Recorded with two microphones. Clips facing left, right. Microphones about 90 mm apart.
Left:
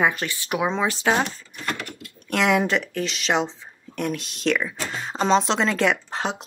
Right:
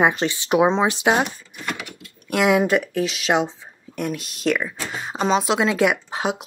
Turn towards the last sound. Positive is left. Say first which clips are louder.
# right 3 dB
turn(degrees=-10)  # may be behind; listen again after turning